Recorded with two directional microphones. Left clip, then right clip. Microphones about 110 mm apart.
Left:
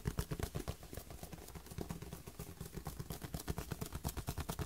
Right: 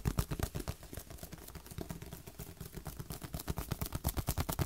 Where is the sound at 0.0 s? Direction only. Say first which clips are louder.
Right 4 dB; 30° right (ahead or behind).